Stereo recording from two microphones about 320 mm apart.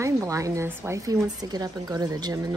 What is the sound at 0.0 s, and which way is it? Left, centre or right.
Speech, centre.